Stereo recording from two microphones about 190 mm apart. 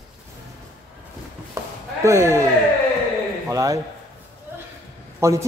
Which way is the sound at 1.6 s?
15° right (ahead or behind).